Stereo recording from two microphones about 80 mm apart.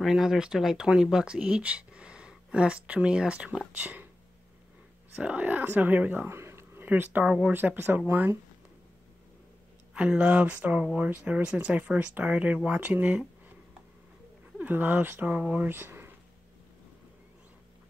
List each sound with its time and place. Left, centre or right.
0.0 s speech: centre
5.1 s speech: centre
6.2 s a sound: right
7.2 s speech: centre
7.5 s speech: right
9.9 s speech: centre
14.6 s speech: right